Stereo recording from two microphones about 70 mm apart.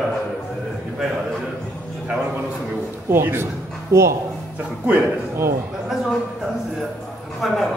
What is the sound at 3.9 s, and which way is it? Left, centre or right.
Speech, right.